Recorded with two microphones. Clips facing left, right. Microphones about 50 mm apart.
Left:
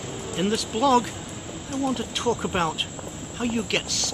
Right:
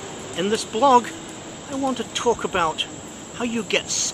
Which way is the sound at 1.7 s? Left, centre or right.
Centre.